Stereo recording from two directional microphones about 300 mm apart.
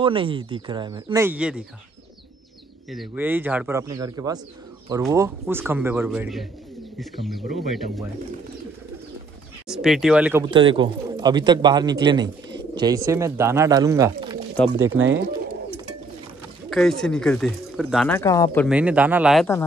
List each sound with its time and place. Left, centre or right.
0.0 s speech: centre
2.9 s speech: centre
9.7 s speech: centre
10.5 s speech: centre
14.7 s speech: right
17.0 s speech: centre
18.7 s speech: centre